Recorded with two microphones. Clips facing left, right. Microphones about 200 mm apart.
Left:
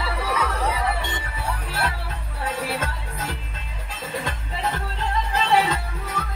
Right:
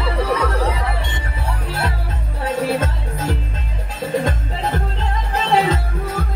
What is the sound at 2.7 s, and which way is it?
Music, 40° right (ahead or behind).